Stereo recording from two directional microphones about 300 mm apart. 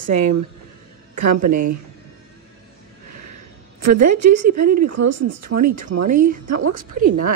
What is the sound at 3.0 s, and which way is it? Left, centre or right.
Music, right.